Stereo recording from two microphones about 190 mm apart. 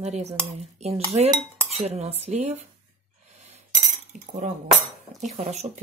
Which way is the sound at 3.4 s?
35° right (ahead or behind).